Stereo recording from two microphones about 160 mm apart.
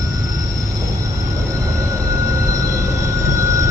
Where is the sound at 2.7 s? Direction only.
20° right (ahead or behind).